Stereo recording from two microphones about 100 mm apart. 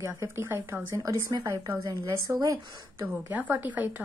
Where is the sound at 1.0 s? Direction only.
40° right (ahead or behind).